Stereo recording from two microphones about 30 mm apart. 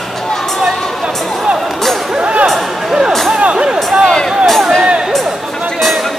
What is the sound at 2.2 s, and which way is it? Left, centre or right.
Music, right.